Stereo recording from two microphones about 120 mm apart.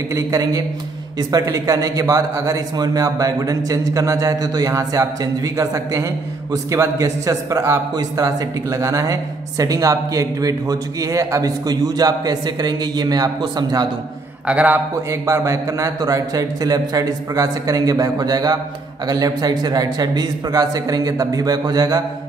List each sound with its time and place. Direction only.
0.1 s a man's voice: 30° right (ahead or behind)
14.5 s a man's voice: 10° right (ahead or behind)
15.0 s a man's voice: 25° right (ahead or behind)